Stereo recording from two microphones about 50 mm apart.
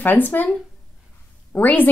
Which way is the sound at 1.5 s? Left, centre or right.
Left.